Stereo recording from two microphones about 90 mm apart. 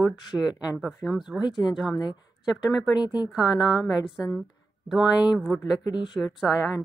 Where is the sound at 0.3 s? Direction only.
30° right (ahead or behind).